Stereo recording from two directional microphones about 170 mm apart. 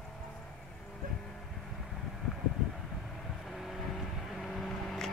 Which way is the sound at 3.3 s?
Centre (ahead or behind).